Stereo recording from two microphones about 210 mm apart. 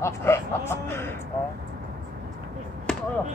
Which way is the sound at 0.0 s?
10° left (ahead or behind).